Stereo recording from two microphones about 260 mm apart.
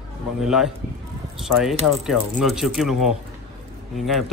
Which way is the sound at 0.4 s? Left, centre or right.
Centre.